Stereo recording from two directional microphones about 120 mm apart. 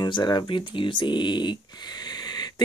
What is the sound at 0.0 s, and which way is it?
Speech, 35° left (ahead or behind).